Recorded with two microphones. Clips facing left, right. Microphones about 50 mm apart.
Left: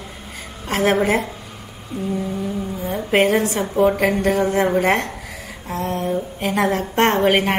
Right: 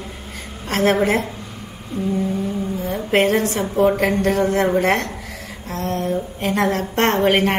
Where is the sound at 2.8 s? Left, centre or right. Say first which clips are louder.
Left 1 dB; centre.